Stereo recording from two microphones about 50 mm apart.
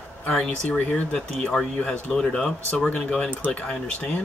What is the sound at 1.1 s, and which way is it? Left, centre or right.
Speech, centre.